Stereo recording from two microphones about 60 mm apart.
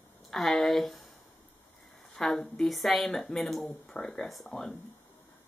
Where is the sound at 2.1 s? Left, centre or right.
Centre.